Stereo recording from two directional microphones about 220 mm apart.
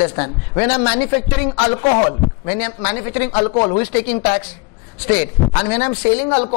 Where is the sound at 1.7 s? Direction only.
25° left (ahead or behind).